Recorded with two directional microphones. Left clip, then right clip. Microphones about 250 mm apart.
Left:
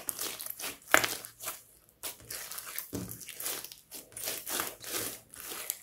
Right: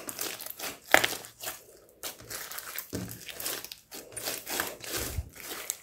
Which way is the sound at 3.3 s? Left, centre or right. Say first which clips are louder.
Right 5 dB; centre.